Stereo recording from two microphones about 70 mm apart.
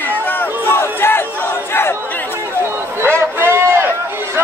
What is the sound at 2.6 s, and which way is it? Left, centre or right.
Run, right.